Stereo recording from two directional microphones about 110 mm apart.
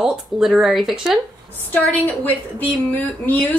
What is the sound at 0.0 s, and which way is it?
Speech, 5° right (ahead or behind).